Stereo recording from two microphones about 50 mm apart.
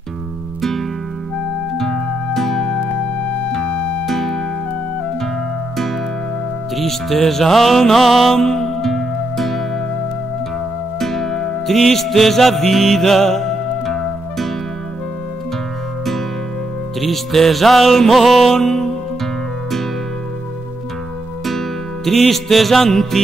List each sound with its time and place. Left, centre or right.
0.6 s music: centre
3.6 s music: left
4.0 s music: centre
6.7 s music: centre
11.0 s music: centre
17.0 s music: centre
21.5 s music: centre